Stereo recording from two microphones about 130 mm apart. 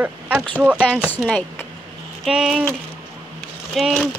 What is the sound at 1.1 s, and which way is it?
Speech, 5° left (ahead or behind).